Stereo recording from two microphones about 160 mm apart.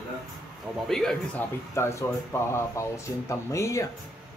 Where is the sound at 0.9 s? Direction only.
5° left (ahead or behind).